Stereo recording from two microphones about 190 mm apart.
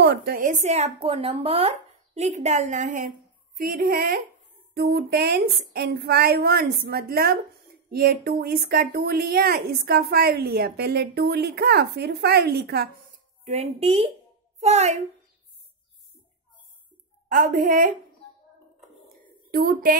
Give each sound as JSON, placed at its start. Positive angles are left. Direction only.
{"t": 0.0, "sound": "a woman's voice", "side_deg": -60}
{"t": 13.4, "sound": "speech", "side_deg": -35}
{"t": 17.3, "sound": "a woman's voice", "side_deg": -45}
{"t": 19.5, "sound": "a woman's voice", "side_deg": -50}